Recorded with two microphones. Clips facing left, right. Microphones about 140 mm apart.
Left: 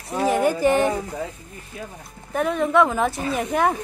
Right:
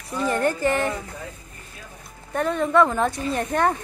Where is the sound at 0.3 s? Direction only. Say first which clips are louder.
Left 3 dB; 10° left (ahead or behind).